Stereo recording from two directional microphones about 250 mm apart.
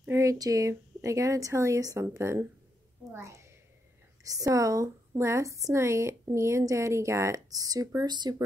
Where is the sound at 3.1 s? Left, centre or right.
Centre.